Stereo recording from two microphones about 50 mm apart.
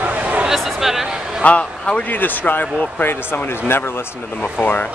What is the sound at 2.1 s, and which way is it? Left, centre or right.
Speech, left.